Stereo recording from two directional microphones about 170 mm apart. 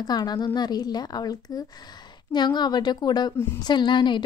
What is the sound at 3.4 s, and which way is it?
Speech, 15° left (ahead or behind).